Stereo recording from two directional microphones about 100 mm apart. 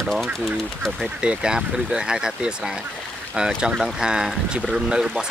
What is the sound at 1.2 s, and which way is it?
Speech, 10° right (ahead or behind).